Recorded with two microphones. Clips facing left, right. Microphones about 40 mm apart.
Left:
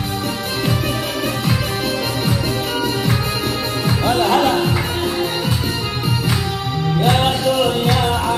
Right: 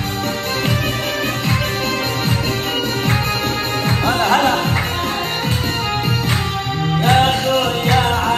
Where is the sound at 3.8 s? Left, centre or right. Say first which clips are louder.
Left 1 dB; right.